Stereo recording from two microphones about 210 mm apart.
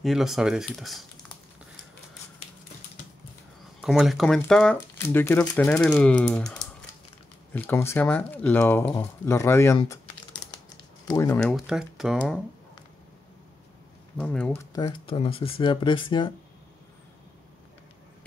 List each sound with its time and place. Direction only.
0.0 s speech: centre (ahead or behind)
3.8 s speech: centre (ahead or behind)
11.1 s speech: 15° left (ahead or behind)
11.3 s speech: centre (ahead or behind)
14.1 s speech: 5° left (ahead or behind); by 16.3 s 25° left (ahead or behind)